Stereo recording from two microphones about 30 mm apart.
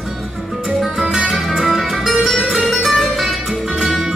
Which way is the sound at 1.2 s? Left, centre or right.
Centre.